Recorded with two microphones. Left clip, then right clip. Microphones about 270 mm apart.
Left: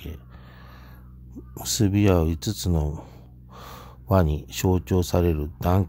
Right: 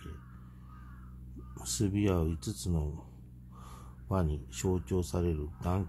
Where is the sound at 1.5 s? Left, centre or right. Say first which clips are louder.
Left 10 dB; left.